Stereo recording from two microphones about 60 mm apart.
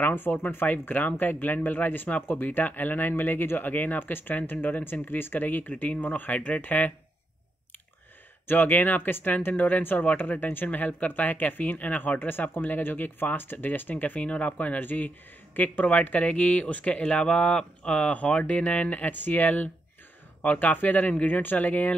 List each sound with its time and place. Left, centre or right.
0.0 s speech: left
8.5 s speech: left